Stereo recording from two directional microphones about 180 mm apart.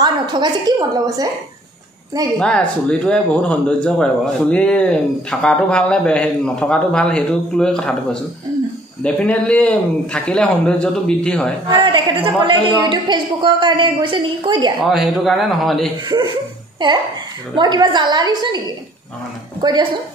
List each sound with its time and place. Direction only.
0.0 s a woman's voice: 25° right (ahead or behind)
2.3 s speech: 5° left (ahead or behind)
11.7 s a woman's voice: 25° right (ahead or behind)
14.8 s speech: centre (ahead or behind)
16.8 s a woman's voice: 25° right (ahead or behind)
19.6 s a woman's voice: 25° right (ahead or behind)